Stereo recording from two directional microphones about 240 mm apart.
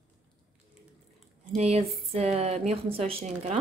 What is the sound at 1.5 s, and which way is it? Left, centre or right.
Speech, right.